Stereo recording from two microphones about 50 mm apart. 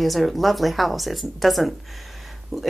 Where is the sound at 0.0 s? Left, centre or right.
Centre.